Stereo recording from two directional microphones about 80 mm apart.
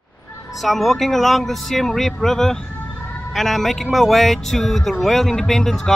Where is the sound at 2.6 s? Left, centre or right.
Left.